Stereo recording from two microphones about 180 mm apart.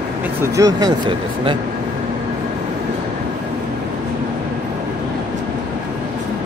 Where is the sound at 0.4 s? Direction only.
20° right (ahead or behind).